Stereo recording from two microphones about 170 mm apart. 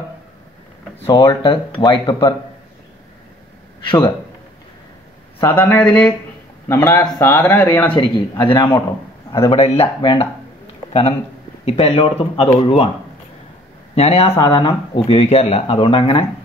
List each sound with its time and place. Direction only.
0.9 s speech: 30° left (ahead or behind)
3.8 s speech: 30° left (ahead or behind)
5.4 s speech: 10° left (ahead or behind)
8.5 s speech: 30° left (ahead or behind)
13.9 s speech: 40° left (ahead or behind)